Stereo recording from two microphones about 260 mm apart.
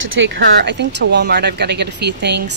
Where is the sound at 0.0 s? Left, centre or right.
Right.